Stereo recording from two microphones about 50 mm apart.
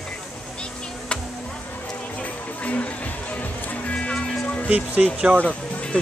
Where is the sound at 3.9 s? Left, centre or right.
Centre.